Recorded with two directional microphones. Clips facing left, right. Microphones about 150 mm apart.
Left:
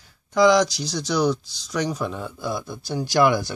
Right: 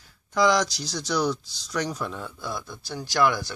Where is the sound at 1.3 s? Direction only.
10° left (ahead or behind).